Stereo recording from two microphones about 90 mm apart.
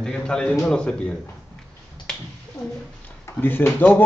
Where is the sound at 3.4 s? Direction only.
20° left (ahead or behind).